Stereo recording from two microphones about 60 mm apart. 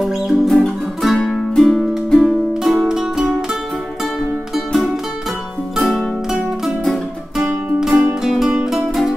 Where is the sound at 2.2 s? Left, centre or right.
Centre.